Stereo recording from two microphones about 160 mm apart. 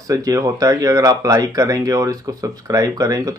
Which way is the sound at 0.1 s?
20° right (ahead or behind).